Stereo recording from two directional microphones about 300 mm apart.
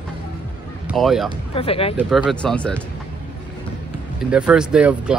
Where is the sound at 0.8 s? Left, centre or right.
Centre.